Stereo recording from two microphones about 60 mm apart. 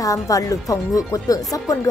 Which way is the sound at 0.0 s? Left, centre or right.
Left.